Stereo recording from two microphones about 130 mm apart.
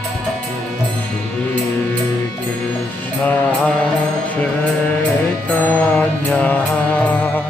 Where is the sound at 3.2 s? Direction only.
10° left (ahead or behind).